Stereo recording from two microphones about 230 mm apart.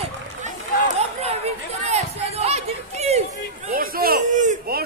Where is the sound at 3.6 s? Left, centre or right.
Right.